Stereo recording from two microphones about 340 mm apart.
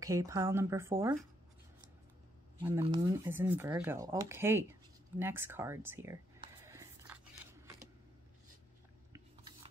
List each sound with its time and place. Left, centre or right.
0.0 s speech: centre
2.6 s speech: centre
6.6 s a sound: centre
9.1 s biting: centre